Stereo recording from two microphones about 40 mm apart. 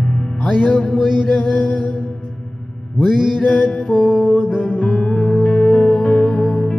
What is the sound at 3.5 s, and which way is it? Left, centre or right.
Music, centre.